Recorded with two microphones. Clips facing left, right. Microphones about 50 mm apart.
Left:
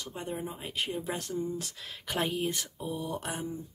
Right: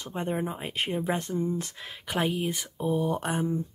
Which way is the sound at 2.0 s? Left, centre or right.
Centre.